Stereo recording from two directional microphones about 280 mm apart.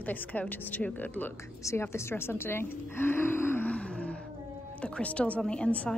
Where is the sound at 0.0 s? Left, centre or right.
Centre.